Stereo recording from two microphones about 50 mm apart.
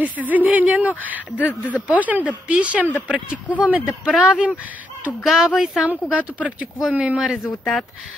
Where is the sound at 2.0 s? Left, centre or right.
Right.